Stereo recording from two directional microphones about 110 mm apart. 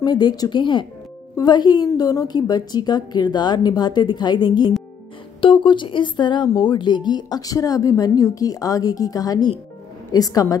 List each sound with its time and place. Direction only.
0.0 s speech: 40° left (ahead or behind)